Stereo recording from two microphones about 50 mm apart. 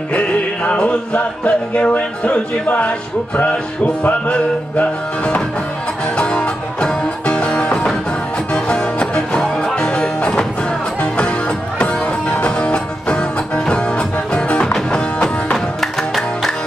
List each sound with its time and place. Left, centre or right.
0.7 s music: left
15.5 s music: centre